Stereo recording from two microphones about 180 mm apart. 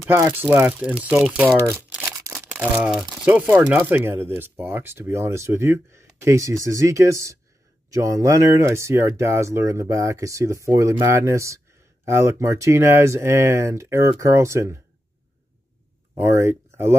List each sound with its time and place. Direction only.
0.0 s speech: 15° right (ahead or behind)
1.6 s crumpling: 10° right (ahead or behind)
2.0 s speech: 15° right (ahead or behind)
16.2 s speech: 15° right (ahead or behind)